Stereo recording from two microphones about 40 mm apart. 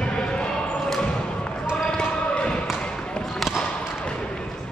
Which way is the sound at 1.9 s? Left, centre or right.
Left.